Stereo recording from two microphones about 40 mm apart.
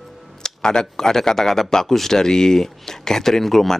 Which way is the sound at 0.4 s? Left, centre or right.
Centre.